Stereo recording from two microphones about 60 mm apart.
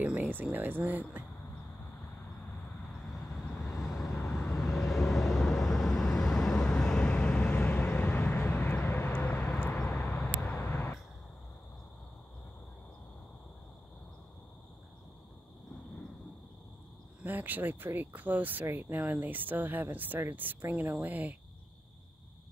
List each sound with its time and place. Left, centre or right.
0.0 s a sound: right
0.3 s speech: right
3.6 s vehicle: centre; by 9.5 s left
9.5 s vehicle: centre
10.4 s a sound: left
10.7 s vehicle: left
17.2 s speech: right